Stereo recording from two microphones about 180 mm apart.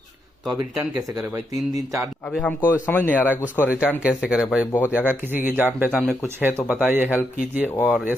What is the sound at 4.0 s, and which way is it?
Speech, 5° right (ahead or behind).